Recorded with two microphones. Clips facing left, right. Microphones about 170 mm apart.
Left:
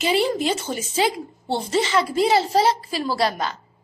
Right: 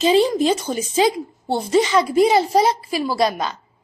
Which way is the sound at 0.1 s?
15° right (ahead or behind).